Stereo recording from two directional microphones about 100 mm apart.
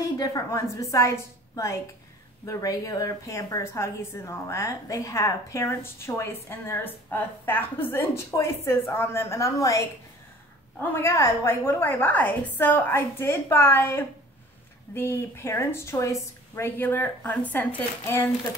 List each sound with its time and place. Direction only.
0.2 s a woman's voice: 35° left (ahead or behind)